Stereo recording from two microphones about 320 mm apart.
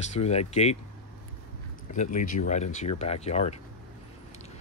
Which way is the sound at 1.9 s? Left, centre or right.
Left.